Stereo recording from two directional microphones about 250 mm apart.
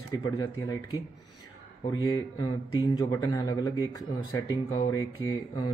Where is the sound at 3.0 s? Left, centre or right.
Centre.